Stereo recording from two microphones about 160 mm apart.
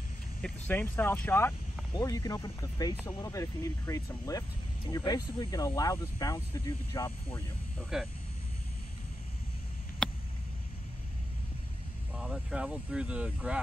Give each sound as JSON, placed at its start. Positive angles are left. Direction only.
{"t": 0.4, "sound": "speech", "side_deg": 10}
{"t": 2.0, "sound": "speech", "side_deg": 20}
{"t": 7.9, "sound": "speech", "side_deg": -5}
{"t": 10.0, "sound": "a sound", "side_deg": 5}
{"t": 12.2, "sound": "speech", "side_deg": -5}